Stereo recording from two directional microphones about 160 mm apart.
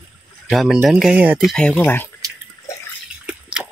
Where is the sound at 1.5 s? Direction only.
5° left (ahead or behind).